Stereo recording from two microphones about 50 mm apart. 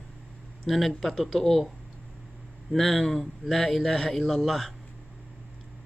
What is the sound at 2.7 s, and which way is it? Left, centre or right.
Speech, centre.